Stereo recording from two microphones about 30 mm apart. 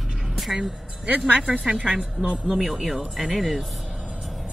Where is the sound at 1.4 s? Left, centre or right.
Right.